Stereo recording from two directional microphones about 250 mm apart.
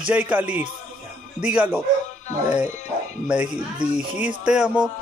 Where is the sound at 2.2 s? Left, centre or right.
Left.